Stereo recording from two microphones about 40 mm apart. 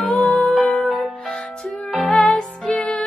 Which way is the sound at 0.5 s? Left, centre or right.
Left.